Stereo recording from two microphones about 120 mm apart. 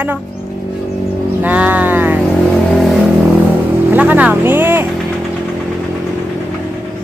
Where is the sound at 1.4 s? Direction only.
15° right (ahead or behind).